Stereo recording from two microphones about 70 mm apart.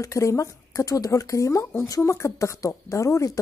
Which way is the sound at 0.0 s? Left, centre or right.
Left.